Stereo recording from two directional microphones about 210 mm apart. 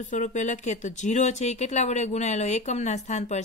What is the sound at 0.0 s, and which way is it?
Speech, 35° left (ahead or behind).